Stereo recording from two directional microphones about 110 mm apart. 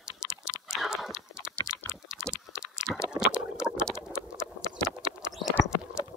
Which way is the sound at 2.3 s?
10° right (ahead or behind).